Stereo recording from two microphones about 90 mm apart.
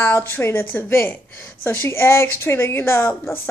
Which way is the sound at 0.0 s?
25° left (ahead or behind).